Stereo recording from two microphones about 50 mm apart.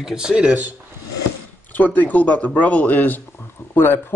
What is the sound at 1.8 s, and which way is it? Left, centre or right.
Speech, left.